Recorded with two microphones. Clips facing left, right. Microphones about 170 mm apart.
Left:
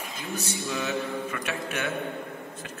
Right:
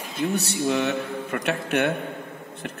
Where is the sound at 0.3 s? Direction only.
70° right (ahead or behind).